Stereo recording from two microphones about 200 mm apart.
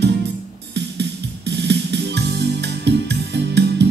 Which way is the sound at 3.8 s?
60° right (ahead or behind).